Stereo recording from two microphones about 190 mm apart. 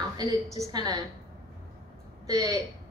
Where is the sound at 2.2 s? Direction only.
20° right (ahead or behind).